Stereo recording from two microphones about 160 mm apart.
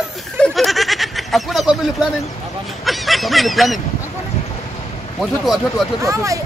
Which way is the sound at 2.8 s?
Centre (ahead or behind).